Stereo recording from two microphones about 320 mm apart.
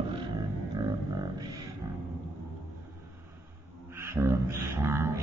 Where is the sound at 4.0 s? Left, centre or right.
Centre.